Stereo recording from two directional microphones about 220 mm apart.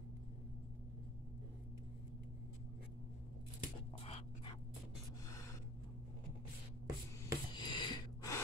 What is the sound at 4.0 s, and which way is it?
Dog, 25° left (ahead or behind).